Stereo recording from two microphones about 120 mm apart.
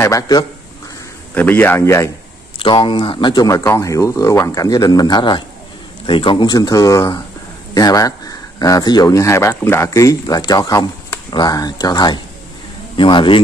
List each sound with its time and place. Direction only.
0.0 s speech: 30° left (ahead or behind)
1.3 s speech: 15° left (ahead or behind)
2.6 s speech: 45° left (ahead or behind)
3.4 s speech: 25° left (ahead or behind); by 13.4 s 45° left (ahead or behind)